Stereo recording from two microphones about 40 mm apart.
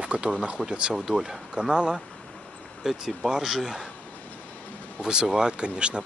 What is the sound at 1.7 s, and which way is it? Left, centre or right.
Speech, right.